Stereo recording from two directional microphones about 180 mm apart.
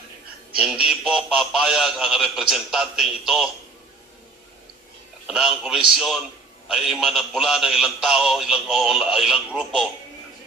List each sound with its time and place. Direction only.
0.6 s speech: 5° right (ahead or behind)
5.2 s speech: 5° right (ahead or behind)